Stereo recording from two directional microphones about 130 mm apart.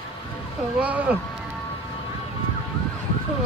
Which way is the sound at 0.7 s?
10° right (ahead or behind).